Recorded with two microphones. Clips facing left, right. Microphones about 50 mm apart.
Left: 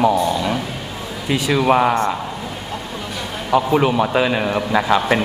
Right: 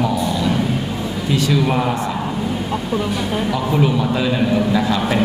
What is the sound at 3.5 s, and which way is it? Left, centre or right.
Speech, left.